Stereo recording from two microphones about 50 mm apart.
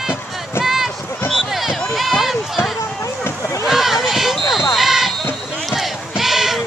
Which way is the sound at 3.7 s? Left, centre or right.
Centre.